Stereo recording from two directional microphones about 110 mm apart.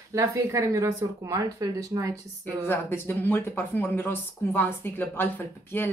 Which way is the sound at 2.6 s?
20° left (ahead or behind).